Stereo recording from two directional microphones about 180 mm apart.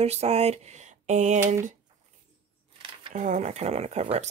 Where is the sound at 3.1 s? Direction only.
45° right (ahead or behind).